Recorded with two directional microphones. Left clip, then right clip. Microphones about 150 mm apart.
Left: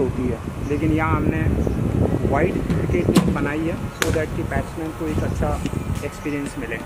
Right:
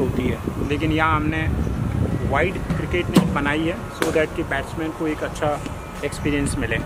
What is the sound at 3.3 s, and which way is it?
Speech, 40° right (ahead or behind).